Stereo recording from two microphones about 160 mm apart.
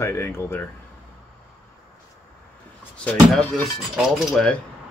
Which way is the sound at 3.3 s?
Centre (ahead or behind).